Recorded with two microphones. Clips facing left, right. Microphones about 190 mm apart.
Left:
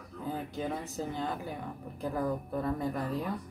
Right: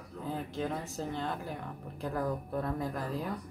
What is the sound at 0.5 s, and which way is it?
Speech, centre (ahead or behind).